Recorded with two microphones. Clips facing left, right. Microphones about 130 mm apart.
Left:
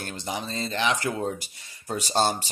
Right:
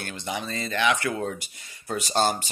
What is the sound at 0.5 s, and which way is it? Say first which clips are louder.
Speech: right 2 dB; 30° left (ahead or behind).